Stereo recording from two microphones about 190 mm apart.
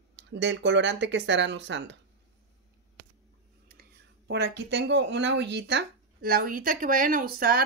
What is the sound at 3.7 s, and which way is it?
Speech, 55° right (ahead or behind).